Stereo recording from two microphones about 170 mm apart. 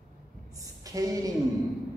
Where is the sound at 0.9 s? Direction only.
20° right (ahead or behind).